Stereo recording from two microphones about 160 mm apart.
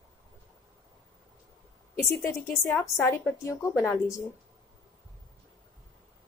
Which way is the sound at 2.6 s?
10° left (ahead or behind).